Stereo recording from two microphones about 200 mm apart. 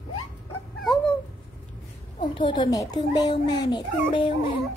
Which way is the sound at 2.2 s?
25° left (ahead or behind).